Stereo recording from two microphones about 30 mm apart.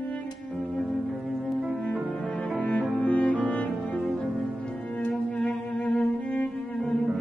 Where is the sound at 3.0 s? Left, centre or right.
Left.